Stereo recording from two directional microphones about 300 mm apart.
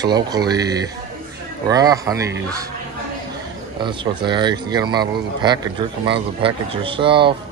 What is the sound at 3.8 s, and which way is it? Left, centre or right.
Speech, centre.